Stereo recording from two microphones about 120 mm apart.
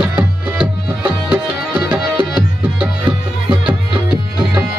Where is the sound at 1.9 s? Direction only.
5° right (ahead or behind).